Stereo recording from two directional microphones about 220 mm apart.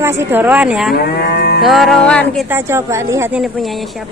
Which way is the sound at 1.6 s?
Centre (ahead or behind).